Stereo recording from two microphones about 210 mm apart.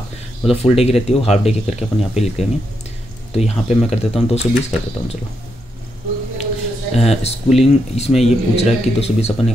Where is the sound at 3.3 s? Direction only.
30° left (ahead or behind).